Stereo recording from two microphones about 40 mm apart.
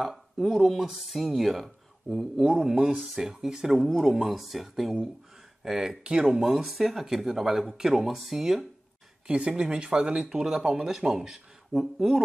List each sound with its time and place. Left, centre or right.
0.0 s speech: centre
3.8 s speech: centre
9.3 s speech: right
10.1 s speech: centre